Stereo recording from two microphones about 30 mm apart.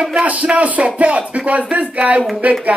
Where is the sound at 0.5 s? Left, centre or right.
Right.